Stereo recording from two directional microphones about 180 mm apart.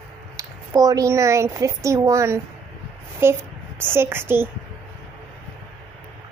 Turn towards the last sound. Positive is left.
turn(degrees=-10)  # may be behind; listen again after turning